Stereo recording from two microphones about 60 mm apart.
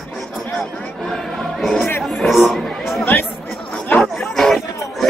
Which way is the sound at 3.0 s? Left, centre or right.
Left.